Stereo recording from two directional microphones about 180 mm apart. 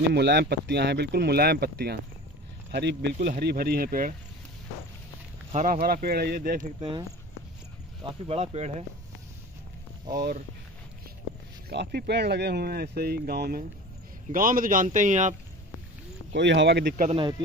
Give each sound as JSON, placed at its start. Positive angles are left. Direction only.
{"t": 0.1, "sound": "speech", "side_deg": -65}
{"t": 5.5, "sound": "speech", "side_deg": -45}
{"t": 6.8, "sound": "speech", "side_deg": -25}
{"t": 11.7, "sound": "speech", "side_deg": -70}
{"t": 16.3, "sound": "speech", "side_deg": -80}
{"t": 17.1, "sound": "speech", "side_deg": -25}